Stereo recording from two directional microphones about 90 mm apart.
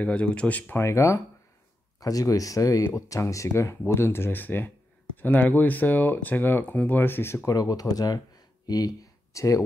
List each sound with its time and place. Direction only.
0.0 s speech: 15° left (ahead or behind)
0.7 s speech: 30° left (ahead or behind)
7.4 s speech: 45° left (ahead or behind)